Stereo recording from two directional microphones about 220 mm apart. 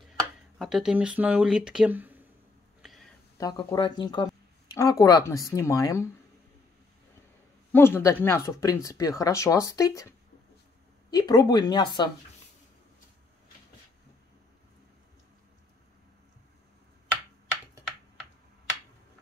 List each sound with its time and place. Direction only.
0.6 s speech: centre (ahead or behind)
2.8 s a sound: centre (ahead or behind)
3.3 s speech: 20° left (ahead or behind)
7.7 s speech: 10° left (ahead or behind)
11.1 s speech: 20° left (ahead or behind)